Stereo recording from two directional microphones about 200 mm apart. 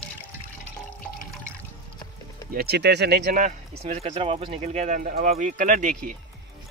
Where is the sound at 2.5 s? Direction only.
55° right (ahead or behind).